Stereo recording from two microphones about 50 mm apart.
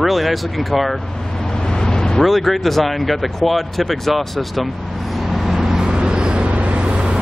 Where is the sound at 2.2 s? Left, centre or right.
Centre.